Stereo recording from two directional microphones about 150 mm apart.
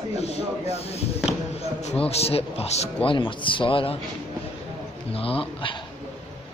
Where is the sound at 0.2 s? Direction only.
45° left (ahead or behind).